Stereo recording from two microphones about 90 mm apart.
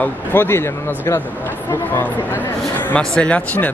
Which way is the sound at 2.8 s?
10° left (ahead or behind).